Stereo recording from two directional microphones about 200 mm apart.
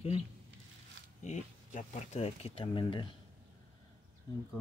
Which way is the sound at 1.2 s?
35° left (ahead or behind).